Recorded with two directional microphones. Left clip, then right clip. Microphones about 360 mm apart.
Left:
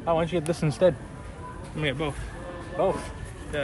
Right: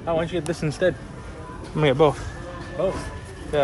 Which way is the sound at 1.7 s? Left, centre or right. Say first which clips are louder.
Right 11 dB; centre.